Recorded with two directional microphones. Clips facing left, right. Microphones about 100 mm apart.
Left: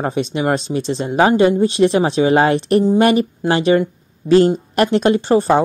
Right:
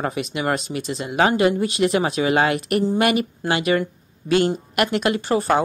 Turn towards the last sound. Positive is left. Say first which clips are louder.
# left 6 dB
turn(degrees=25)  # may be behind; listen again after turning